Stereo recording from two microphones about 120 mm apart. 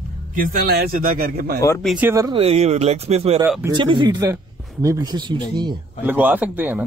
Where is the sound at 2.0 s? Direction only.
15° right (ahead or behind).